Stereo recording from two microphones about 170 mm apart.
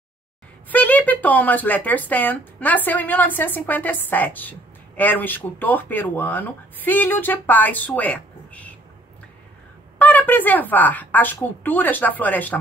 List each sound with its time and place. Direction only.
0.7 s speech: 10° left (ahead or behind)
9.9 s speech: 10° left (ahead or behind)